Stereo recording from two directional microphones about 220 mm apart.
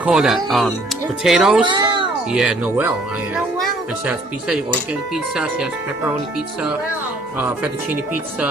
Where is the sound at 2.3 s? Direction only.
5° right (ahead or behind).